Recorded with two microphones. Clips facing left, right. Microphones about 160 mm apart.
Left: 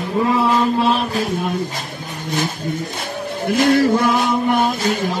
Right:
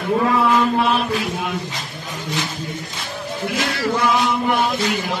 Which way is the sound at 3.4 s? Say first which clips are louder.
Left 9 dB; 50° left (ahead or behind).